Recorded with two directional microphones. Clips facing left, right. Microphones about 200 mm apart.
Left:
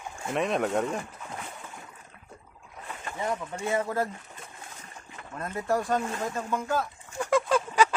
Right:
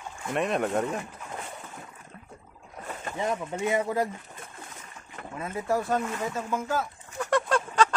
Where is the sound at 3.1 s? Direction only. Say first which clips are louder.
Right 2 dB; 20° right (ahead or behind).